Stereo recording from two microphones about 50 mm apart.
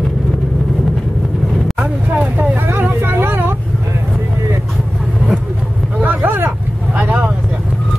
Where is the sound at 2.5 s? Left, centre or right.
Right.